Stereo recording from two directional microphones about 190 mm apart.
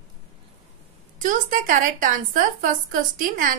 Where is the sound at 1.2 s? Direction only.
45° right (ahead or behind).